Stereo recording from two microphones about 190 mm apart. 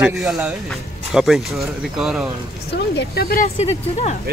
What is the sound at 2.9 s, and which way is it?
Speech, 55° left (ahead or behind).